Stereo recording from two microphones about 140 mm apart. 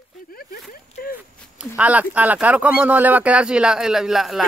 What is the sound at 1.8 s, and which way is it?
Speech, 10° right (ahead or behind).